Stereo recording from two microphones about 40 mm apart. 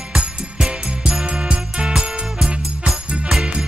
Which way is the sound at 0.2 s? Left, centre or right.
Right.